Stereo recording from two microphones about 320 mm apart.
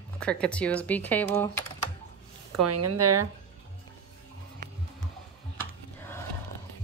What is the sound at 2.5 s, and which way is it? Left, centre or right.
Speech, right.